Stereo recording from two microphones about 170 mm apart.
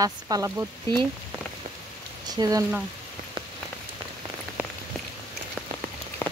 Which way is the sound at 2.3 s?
20° right (ahead or behind).